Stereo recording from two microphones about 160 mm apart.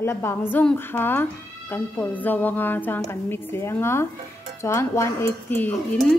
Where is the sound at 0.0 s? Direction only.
15° left (ahead or behind).